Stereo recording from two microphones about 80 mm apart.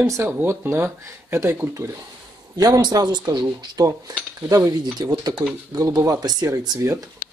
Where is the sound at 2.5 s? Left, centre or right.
Right.